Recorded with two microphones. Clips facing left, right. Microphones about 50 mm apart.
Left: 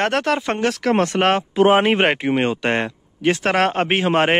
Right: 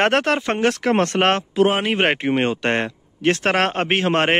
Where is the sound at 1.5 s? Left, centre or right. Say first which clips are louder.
Left 7 dB; left.